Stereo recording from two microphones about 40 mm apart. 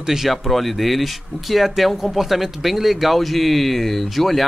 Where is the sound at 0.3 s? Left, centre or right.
Centre.